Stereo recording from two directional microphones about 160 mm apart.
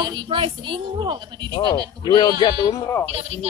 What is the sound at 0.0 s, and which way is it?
Speech, 25° right (ahead or behind).